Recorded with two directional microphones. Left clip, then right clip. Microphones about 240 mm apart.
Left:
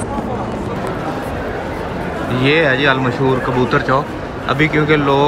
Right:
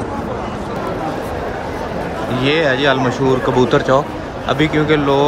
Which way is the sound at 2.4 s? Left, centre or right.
Centre.